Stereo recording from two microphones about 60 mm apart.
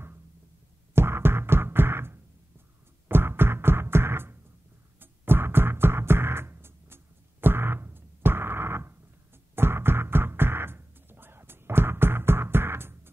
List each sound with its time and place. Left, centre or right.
0.9 s music: right